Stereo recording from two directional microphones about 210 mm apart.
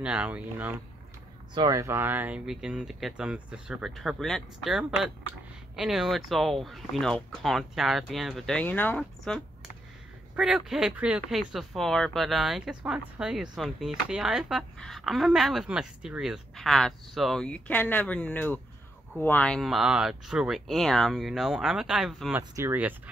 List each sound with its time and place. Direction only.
0.0 s speech: 5° right (ahead or behind)
1.5 s speech: 20° right (ahead or behind)